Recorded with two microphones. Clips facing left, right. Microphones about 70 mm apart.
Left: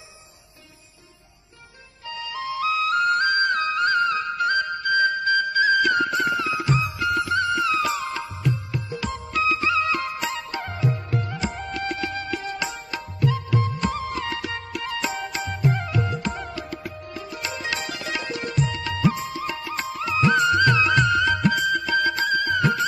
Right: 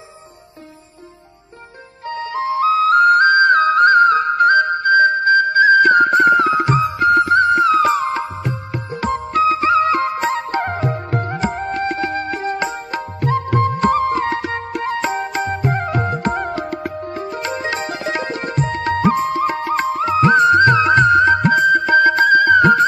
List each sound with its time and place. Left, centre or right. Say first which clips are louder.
2.0 s music: right 9 dB; right